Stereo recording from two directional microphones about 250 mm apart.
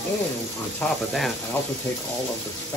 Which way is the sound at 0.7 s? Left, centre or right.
Centre.